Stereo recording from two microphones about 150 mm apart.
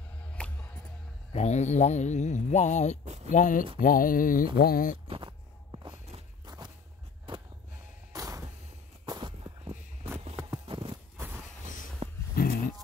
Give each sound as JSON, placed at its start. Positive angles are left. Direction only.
{"t": 0.2, "sound": "music", "side_deg": 10}
{"t": 1.3, "sound": "speech", "side_deg": 50}
{"t": 4.6, "sound": "speech", "side_deg": 80}
{"t": 5.0, "sound": "a sound", "side_deg": -40}
{"t": 6.4, "sound": "walk", "side_deg": -25}
{"t": 8.1, "sound": "music", "side_deg": -20}
{"t": 9.0, "sound": "walk", "side_deg": -30}
{"t": 9.7, "sound": "a sound", "side_deg": -15}
{"t": 10.7, "sound": "a sound", "side_deg": -35}
{"t": 12.0, "sound": "dog", "side_deg": -50}